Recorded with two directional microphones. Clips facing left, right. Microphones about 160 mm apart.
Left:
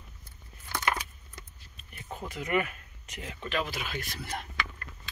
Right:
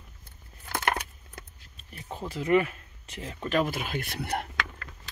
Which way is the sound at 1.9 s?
30° right (ahead or behind).